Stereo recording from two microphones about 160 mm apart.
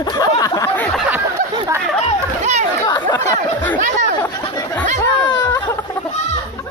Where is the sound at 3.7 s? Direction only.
50° right (ahead or behind).